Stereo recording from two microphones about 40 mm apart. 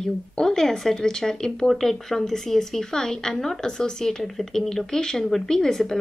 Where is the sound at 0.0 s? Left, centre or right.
Centre.